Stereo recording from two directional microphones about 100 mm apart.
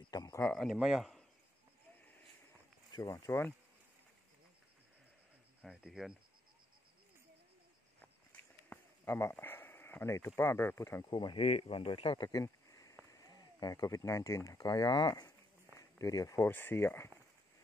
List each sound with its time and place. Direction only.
0.1 s a sound: 40° left (ahead or behind)
0.5 s speech: 5° left (ahead or behind)
2.9 s speech: 35° left (ahead or behind)
5.7 s speech: 5° right (ahead or behind)
8.3 s a sound: 20° left (ahead or behind)
11.1 s speech: 50° left (ahead or behind)
11.4 s speech: 75° left (ahead or behind)
12.3 s a sound: 35° left (ahead or behind)
13.2 s speech: 40° left (ahead or behind)
16.3 s speech: 20° left (ahead or behind)